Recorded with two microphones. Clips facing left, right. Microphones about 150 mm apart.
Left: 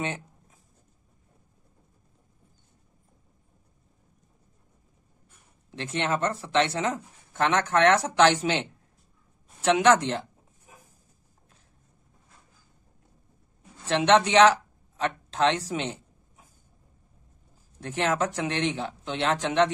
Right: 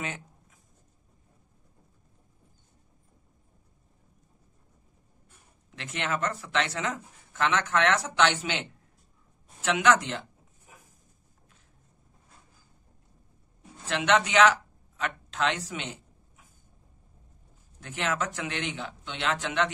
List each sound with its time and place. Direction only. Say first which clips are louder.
0.0 s a sound: left 5 dB; 30° left (ahead or behind)
5.7 s speech: left 4 dB; 30° left (ahead or behind)
13.8 s speech: left 5 dB; 35° left (ahead or behind)
17.7 s speech: left 5 dB; 35° left (ahead or behind)